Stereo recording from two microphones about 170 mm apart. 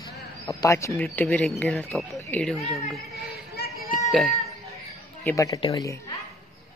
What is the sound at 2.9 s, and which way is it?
Speech, centre (ahead or behind).